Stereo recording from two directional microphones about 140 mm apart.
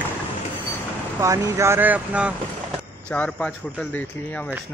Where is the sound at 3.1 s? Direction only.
10° left (ahead or behind).